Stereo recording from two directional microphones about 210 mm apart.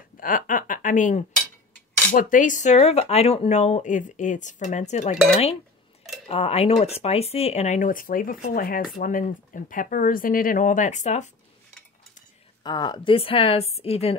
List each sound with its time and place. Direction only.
0.2 s speech: 40° left (ahead or behind)
6.2 s speech: 30° left (ahead or behind)
12.6 s a woman's voice: 20° left (ahead or behind)